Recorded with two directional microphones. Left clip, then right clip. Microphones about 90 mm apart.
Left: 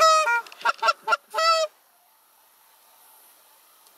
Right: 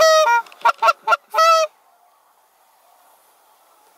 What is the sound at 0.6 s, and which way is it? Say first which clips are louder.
Goose: right 7 dB; 25° right (ahead or behind).